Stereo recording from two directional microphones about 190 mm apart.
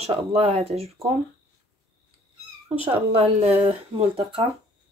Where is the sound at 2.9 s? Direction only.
30° right (ahead or behind).